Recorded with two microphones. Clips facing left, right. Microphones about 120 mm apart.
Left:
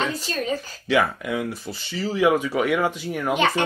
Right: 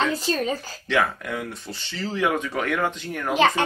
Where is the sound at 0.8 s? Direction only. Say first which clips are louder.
Left 2 dB; 5° left (ahead or behind).